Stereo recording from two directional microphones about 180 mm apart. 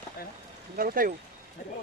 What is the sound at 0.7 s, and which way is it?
Speech, 50° right (ahead or behind).